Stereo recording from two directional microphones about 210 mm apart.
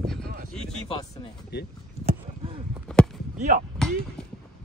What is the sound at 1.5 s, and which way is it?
Speech, 50° left (ahead or behind).